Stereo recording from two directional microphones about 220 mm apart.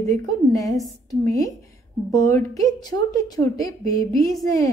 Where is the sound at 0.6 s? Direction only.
15° left (ahead or behind).